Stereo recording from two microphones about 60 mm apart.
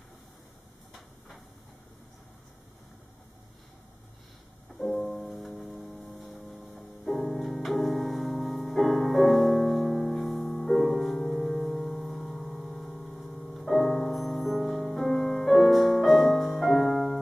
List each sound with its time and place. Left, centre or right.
4.8 s music: centre
5.9 s music: left
6.1 s music: centre